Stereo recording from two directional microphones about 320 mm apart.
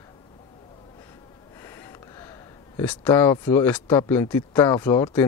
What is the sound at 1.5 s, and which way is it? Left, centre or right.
Speech, centre.